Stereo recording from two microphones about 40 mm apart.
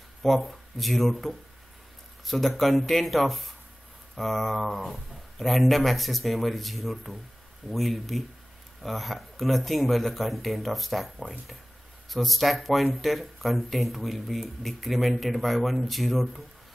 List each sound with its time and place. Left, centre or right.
0.4 s speech: centre
2.2 s speech: centre